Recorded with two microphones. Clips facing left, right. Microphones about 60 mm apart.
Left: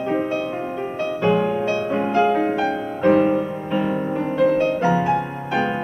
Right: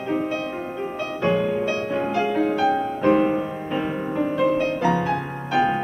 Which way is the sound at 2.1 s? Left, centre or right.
Left.